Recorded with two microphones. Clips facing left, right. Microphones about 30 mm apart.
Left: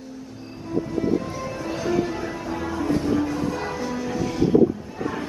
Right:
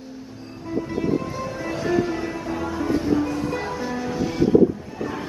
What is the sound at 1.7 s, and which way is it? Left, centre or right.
Music, centre.